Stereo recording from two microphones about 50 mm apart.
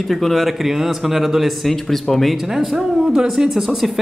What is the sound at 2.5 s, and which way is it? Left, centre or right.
A man's voice, centre.